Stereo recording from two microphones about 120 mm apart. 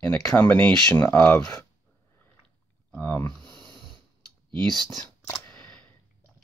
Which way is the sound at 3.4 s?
40° right (ahead or behind).